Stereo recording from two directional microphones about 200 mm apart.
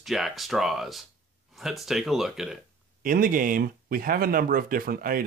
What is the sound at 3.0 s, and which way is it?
Speech, 45° right (ahead or behind).